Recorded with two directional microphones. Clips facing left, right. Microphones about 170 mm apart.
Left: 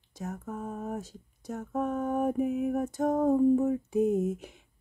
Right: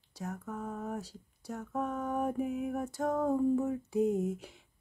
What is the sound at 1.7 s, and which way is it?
Mantra, 20° left (ahead or behind).